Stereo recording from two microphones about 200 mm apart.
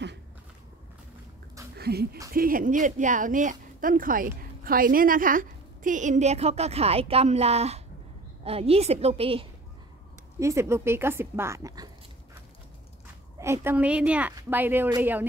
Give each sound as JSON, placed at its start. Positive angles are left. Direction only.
{"t": 1.8, "sound": "a woman's voice", "side_deg": -50}
{"t": 10.4, "sound": "speech", "side_deg": -15}
{"t": 13.4, "sound": "speech", "side_deg": -10}